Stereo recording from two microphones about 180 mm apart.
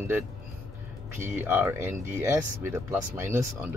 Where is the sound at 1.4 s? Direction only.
10° right (ahead or behind).